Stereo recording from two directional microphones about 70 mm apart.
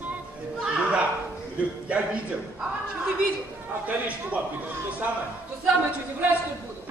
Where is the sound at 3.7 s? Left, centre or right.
Right.